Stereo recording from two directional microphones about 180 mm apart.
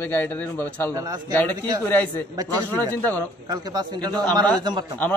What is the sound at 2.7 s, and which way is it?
Speech, 10° left (ahead or behind).